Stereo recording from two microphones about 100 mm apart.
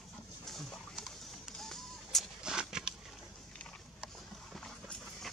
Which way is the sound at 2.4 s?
5° right (ahead or behind).